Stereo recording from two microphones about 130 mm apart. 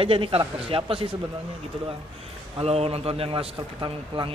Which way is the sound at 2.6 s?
50° right (ahead or behind).